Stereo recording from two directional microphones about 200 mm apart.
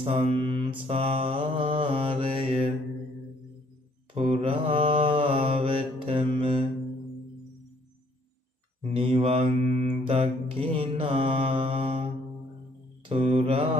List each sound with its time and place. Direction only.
0.0 s mantra: 30° right (ahead or behind)
4.1 s mantra: 30° right (ahead or behind)
8.9 s mantra: 30° right (ahead or behind)